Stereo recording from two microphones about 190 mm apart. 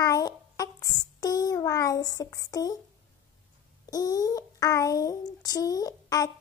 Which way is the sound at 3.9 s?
20° left (ahead or behind).